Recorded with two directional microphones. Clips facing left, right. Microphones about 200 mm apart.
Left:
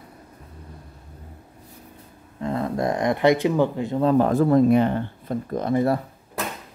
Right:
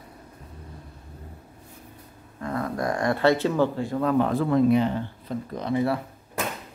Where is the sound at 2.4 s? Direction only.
25° left (ahead or behind).